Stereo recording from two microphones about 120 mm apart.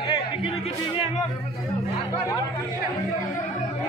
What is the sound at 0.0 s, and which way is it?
Music, 40° left (ahead or behind).